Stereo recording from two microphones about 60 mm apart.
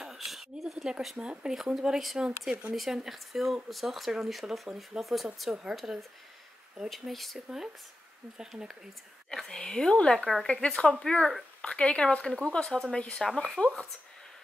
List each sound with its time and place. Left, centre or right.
0.0 s a sound: centre
1.4 s speech: centre
7.3 s speech: centre
9.3 s speech: centre
12.5 s speech: centre